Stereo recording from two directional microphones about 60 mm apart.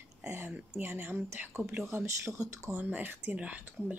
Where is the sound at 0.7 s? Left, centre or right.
Right.